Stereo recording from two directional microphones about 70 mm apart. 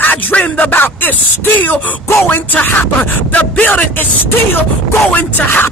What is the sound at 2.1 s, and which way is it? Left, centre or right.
Speech, left.